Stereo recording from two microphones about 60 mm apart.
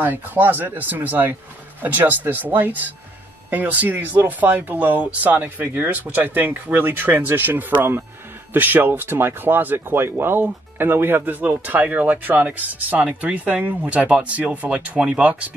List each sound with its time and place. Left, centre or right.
0.0 s speech: right